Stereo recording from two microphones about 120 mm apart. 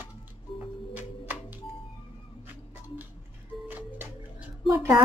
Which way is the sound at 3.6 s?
15° right (ahead or behind).